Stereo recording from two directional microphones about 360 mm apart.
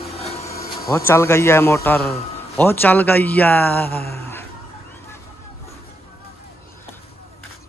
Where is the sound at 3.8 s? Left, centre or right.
Left.